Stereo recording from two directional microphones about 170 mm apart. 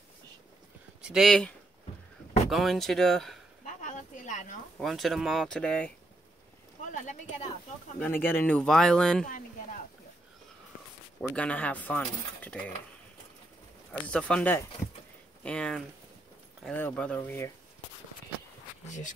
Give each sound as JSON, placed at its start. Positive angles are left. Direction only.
{"t": 1.0, "sound": "speech", "side_deg": 0}
{"t": 2.5, "sound": "speech", "side_deg": 0}
{"t": 3.6, "sound": "a sound", "side_deg": 50}
{"t": 4.7, "sound": "speech", "side_deg": 0}
{"t": 6.9, "sound": "speech", "side_deg": 50}
{"t": 8.0, "sound": "speech", "side_deg": 10}
{"t": 9.2, "sound": "speech", "side_deg": 50}
{"t": 11.1, "sound": "speech", "side_deg": 10}
{"t": 14.0, "sound": "speech", "side_deg": 5}
{"t": 18.9, "sound": "speech", "side_deg": 45}